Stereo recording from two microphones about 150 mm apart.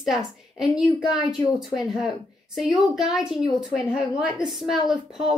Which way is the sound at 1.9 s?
Centre (ahead or behind).